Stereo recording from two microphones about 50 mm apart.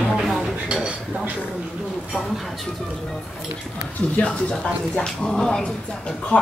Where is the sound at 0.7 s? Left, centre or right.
Right.